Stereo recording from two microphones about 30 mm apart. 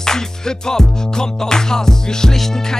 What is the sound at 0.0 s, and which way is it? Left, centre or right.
Music, centre.